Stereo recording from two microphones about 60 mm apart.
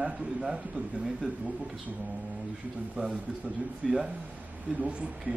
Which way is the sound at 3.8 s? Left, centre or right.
Centre.